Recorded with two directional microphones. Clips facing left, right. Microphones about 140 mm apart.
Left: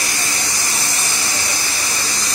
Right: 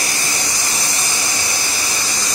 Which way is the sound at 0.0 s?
25° right (ahead or behind).